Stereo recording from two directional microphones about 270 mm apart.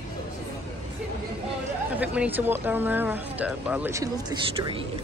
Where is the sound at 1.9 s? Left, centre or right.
Centre.